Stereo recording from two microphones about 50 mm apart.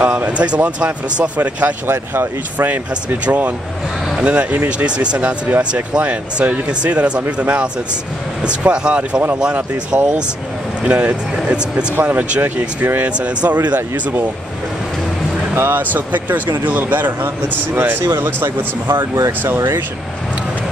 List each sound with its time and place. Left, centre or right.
0.0 s speech: right
0.3 s speech: right
1.9 s speech: right
2.7 s speech: right
11.9 s speech: right
12.8 s speech: right
13.2 s speech: right
15.5 s speech: right
15.8 s speech: right
17.7 s speech: right